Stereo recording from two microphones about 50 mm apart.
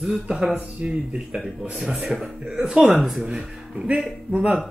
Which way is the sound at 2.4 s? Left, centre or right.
Centre.